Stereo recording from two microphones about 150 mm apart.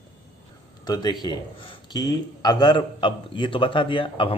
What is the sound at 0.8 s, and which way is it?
A man's voice, 30° left (ahead or behind).